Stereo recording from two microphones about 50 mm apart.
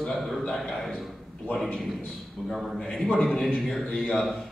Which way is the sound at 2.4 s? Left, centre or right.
Centre.